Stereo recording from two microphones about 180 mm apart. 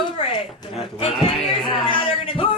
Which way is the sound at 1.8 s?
30° left (ahead or behind).